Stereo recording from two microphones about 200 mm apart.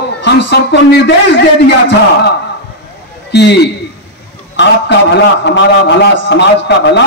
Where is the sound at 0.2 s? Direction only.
60° left (ahead or behind).